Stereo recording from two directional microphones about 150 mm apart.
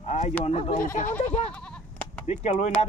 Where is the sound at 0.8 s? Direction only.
65° left (ahead or behind).